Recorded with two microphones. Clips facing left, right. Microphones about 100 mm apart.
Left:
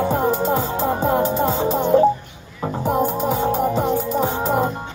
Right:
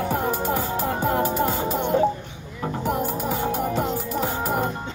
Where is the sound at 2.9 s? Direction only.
20° left (ahead or behind).